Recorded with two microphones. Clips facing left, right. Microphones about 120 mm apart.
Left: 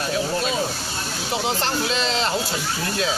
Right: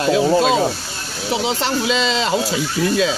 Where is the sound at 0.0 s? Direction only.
90° right.